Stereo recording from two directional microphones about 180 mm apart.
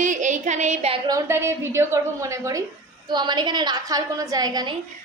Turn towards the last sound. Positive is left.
turn(degrees=-20)  # may be behind; listen again after turning